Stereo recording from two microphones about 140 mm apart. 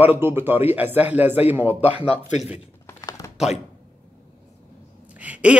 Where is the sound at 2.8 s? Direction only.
20° left (ahead or behind).